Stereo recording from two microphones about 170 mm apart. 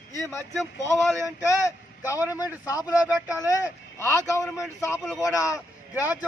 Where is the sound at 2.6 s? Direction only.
20° left (ahead or behind).